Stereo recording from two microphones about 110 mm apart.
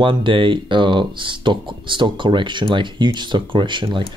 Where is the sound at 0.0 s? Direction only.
50° right (ahead or behind).